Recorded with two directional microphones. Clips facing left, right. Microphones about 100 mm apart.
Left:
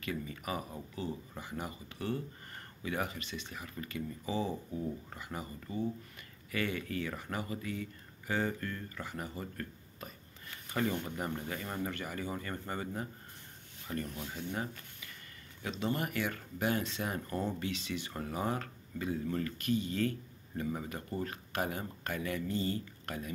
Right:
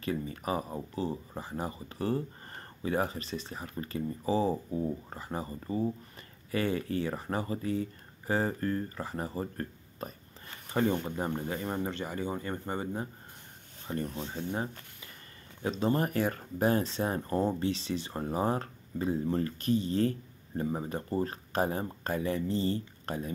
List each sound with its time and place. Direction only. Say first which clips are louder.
0.0 s speech: right 5 dB; 35° right (ahead or behind)